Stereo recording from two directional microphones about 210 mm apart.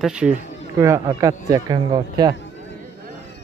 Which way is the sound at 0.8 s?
15° right (ahead or behind).